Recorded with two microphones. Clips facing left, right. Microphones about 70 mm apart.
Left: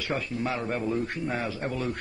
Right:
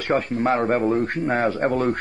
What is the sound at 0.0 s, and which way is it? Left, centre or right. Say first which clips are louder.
A man's voice: right 9 dB; right.